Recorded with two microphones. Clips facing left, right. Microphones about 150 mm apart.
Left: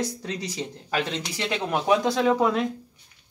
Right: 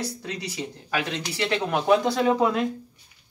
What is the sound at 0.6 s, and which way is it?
Speech, 15° left (ahead or behind).